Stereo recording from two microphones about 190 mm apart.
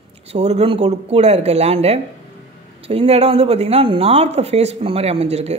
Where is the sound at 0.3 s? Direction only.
35° right (ahead or behind).